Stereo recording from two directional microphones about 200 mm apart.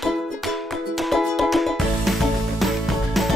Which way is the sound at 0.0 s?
Centre (ahead or behind).